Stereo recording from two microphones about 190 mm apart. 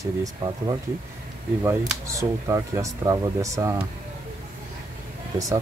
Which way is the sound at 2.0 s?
15° right (ahead or behind).